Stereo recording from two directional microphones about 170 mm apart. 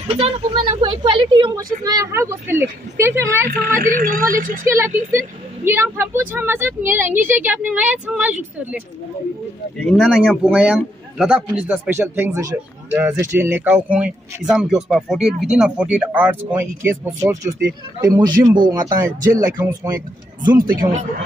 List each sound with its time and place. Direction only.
0.1 s speech: 30° right (ahead or behind); by 3.4 s 15° right (ahead or behind)
3.6 s a woman's voice: 55° right (ahead or behind)
4.6 s a man's voice: 15° right (ahead or behind)